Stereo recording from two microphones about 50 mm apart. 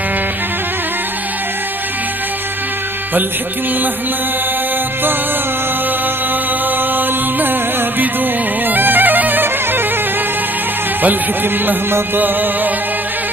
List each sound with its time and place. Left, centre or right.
8.6 s music: right
11.0 s music: right